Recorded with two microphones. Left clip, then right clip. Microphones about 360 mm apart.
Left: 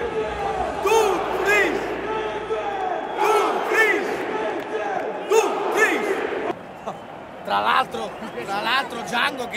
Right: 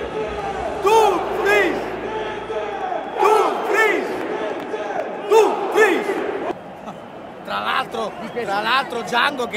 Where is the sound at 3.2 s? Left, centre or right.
Centre.